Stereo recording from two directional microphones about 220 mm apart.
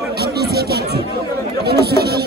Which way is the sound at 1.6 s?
45° right (ahead or behind).